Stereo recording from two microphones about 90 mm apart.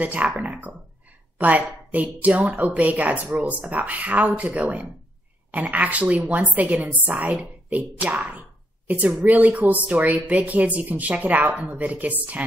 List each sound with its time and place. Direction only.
0.0 s a woman's voice: 15° right (ahead or behind)